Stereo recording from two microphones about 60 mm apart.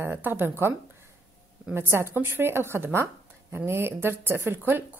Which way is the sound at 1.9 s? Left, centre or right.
Right.